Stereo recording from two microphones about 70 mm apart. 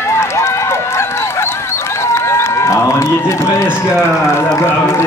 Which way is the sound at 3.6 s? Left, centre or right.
Left.